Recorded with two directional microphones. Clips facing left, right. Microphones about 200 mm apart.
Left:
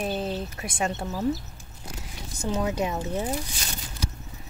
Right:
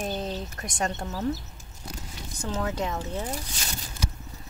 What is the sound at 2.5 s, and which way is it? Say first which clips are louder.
Speech: left 3 dB; 15° left (ahead or behind).